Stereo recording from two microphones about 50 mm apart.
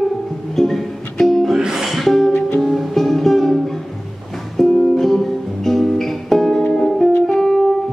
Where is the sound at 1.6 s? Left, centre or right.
Centre.